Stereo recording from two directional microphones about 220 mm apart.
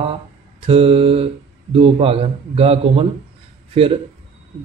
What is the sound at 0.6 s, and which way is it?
Speech, 25° right (ahead or behind).